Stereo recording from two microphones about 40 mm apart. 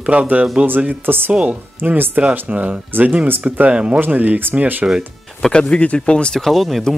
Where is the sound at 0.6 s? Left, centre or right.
Right.